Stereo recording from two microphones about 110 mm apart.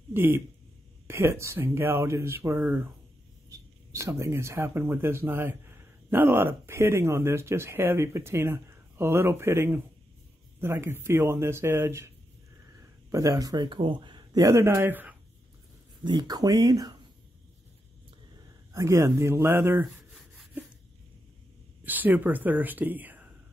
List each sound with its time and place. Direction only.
0.1 s speech: 20° right (ahead or behind)
13.1 s speech: 30° right (ahead or behind)
16.0 s speech: 40° right (ahead or behind)
18.7 s speech: 30° right (ahead or behind)
21.8 s speech: 15° right (ahead or behind)